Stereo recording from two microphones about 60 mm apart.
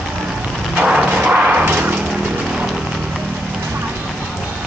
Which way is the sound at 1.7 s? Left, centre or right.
Right.